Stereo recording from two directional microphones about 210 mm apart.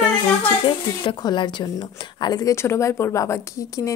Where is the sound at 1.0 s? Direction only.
20° left (ahead or behind).